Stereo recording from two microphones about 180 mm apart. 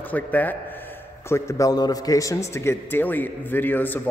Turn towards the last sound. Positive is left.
turn(degrees=10)  # may be behind; listen again after turning